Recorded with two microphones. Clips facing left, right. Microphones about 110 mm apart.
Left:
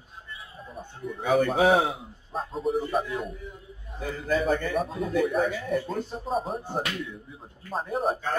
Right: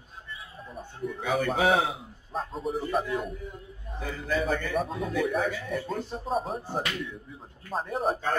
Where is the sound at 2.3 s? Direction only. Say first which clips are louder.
Left 3 dB; centre (ahead or behind).